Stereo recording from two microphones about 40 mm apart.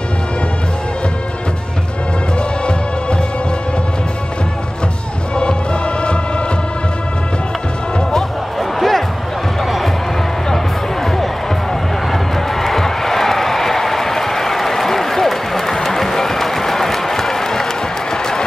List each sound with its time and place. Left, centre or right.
2.3 s music: left
5.3 s music: left
8.5 s music: centre
10.5 s music: centre
12.1 s crowd: centre
18.1 s applause: centre